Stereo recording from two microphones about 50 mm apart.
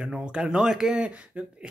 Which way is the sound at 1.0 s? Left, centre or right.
Right.